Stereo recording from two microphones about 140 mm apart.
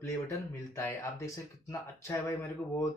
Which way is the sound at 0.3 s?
20° left (ahead or behind).